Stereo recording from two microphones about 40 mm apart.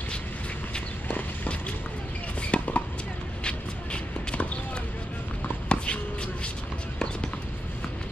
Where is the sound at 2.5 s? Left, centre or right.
Left.